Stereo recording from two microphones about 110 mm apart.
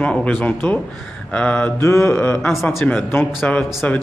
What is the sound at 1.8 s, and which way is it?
Speech, 25° left (ahead or behind).